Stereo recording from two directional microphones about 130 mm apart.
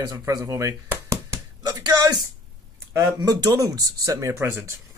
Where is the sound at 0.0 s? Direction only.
25° right (ahead or behind).